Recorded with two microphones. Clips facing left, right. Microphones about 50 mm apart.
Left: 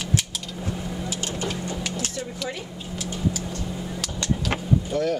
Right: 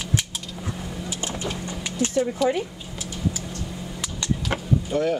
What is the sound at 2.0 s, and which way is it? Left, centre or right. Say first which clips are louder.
Speech: right 9 dB; right.